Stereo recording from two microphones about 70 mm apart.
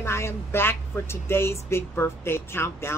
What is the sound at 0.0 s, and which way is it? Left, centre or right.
A woman's voice, left.